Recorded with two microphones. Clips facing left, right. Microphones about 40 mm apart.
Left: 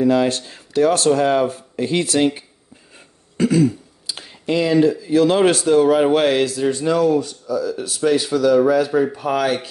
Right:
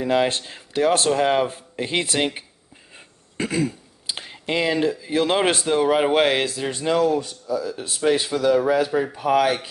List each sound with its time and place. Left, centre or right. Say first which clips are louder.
0.0 s speech: left 4 dB; right
6.6 s speech: left 2 dB; centre